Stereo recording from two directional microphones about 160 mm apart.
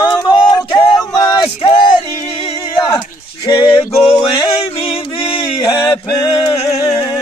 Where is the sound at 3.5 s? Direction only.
30° left (ahead or behind).